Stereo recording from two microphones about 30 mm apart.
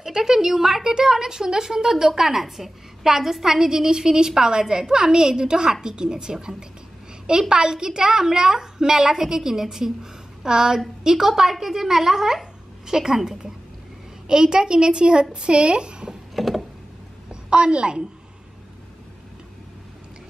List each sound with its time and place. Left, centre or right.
0.0 s a woman's voice: centre
10.4 s a woman's voice: right
16.3 s a sound: centre
17.3 s a woman's voice: right